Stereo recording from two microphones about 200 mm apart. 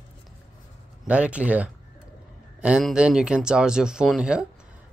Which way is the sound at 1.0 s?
5° right (ahead or behind).